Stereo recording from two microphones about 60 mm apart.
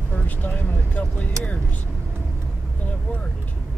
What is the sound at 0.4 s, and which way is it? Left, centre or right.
Speech, left.